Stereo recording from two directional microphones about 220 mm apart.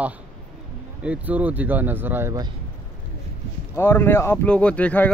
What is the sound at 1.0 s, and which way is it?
Speech, 5° right (ahead or behind).